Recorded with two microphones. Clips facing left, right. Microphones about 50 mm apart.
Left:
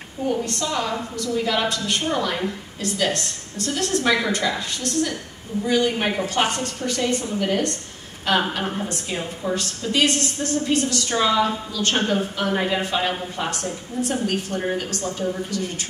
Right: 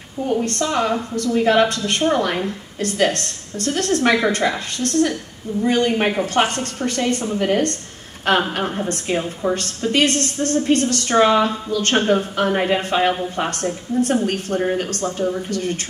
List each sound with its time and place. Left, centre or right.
0.3 s a woman's voice: right